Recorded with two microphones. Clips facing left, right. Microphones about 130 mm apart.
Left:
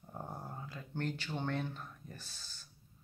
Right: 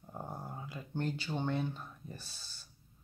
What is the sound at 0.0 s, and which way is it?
Speech, 5° right (ahead or behind).